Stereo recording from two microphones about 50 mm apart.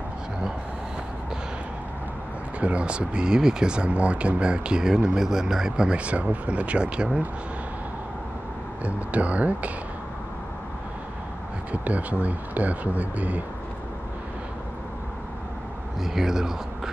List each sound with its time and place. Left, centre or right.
2.6 s speech: right
8.8 s speech: right
11.7 s speech: right
16.0 s speech: centre